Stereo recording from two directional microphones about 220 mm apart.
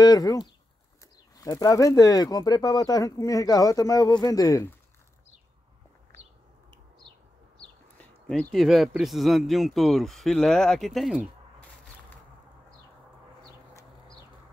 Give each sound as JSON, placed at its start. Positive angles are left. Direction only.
{"t": 0.0, "sound": "speech", "side_deg": 15}
{"t": 7.6, "sound": "speech", "side_deg": 5}